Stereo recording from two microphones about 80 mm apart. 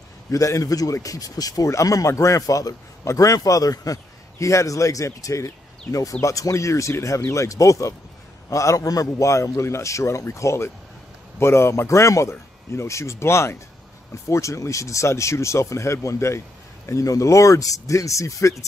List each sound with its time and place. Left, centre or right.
0.3 s a man's voice: left